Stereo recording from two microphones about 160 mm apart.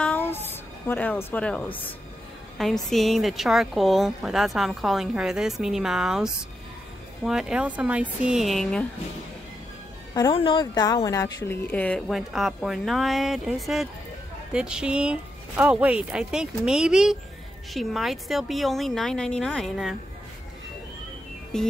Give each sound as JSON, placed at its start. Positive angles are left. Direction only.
{"t": 0.0, "sound": "music", "side_deg": 10}
{"t": 2.5, "sound": "a woman's voice", "side_deg": 0}
{"t": 10.3, "sound": "speech", "side_deg": 30}
{"t": 11.6, "sound": "speech", "side_deg": 10}
{"t": 12.1, "sound": "a woman's voice", "side_deg": 0}
{"t": 21.5, "sound": "a woman's voice", "side_deg": 5}